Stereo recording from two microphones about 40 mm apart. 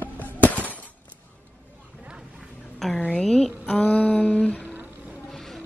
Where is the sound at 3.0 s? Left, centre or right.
Left.